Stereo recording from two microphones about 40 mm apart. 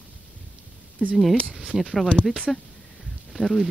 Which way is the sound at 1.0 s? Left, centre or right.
Left.